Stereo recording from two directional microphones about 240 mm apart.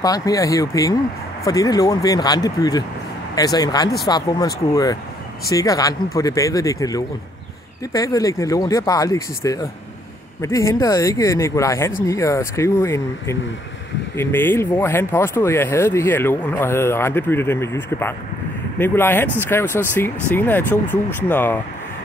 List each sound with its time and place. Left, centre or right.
0.0 s speech: centre
5.5 s speech: centre